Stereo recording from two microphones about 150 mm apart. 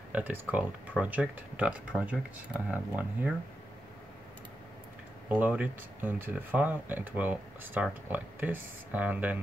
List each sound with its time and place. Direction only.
0.1 s speech: 10° right (ahead or behind)
5.3 s speech: 10° right (ahead or behind)